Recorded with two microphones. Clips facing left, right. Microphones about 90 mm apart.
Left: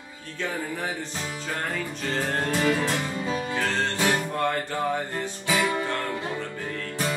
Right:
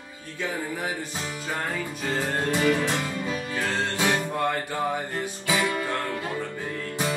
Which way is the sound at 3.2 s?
30° left (ahead or behind).